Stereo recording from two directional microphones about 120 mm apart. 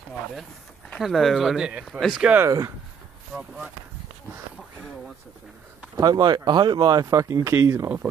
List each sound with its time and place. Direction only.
1.0 s speech: centre (ahead or behind)
2.2 s speech: 15° right (ahead or behind)
5.9 s speech: 35° right (ahead or behind)